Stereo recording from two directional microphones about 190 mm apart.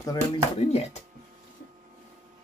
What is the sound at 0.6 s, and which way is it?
Speech, 35° left (ahead or behind).